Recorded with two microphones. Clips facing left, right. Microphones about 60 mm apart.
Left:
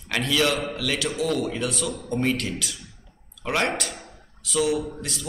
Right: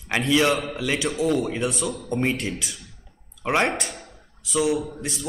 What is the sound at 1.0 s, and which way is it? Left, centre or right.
Speech, centre.